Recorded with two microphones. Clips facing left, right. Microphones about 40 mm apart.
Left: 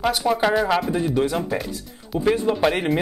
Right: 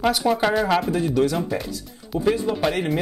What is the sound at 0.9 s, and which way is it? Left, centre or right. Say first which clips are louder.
Speech: right 1 dB; centre.